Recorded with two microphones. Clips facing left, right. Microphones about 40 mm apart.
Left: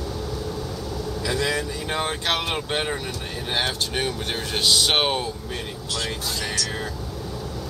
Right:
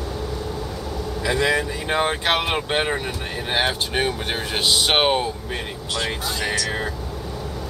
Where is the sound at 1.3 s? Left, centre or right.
Centre.